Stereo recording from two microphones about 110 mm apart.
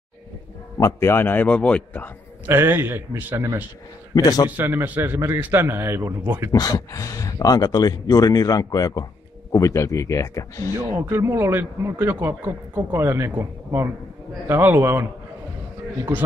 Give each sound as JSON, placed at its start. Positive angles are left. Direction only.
{"t": 0.7, "sound": "a man's voice", "side_deg": 25}
{"t": 2.4, "sound": "speech", "side_deg": -20}
{"t": 4.1, "sound": "a man's voice", "side_deg": 35}
{"t": 4.5, "sound": "a man's voice", "side_deg": -20}
{"t": 6.5, "sound": "speech", "side_deg": 35}
{"t": 11.1, "sound": "speech", "side_deg": -20}